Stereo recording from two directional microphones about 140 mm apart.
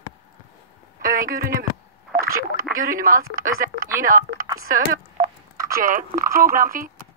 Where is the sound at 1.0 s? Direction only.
85° right.